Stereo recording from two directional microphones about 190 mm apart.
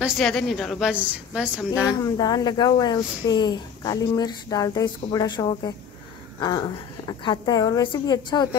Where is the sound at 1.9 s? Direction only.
20° left (ahead or behind).